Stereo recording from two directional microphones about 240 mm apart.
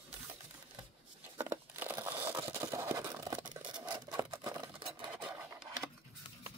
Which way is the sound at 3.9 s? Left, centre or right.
Centre.